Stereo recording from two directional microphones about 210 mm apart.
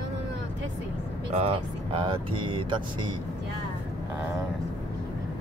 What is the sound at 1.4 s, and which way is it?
Speech, 25° right (ahead or behind).